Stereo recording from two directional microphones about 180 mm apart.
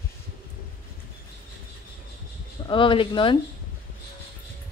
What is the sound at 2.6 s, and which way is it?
Speech, 25° left (ahead or behind).